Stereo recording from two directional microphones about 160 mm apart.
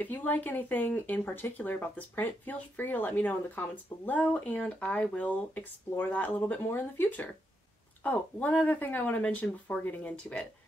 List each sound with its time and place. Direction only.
0.0 s speech: 10° left (ahead or behind)